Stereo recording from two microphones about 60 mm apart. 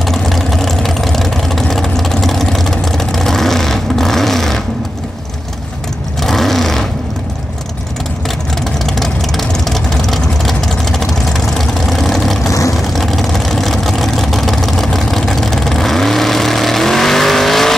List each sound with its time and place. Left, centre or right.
0.0 s vehicle: centre
6.2 s vehicle: centre
9.0 s vehicle: centre
12.4 s vehicle: left
12.7 s vehicle: centre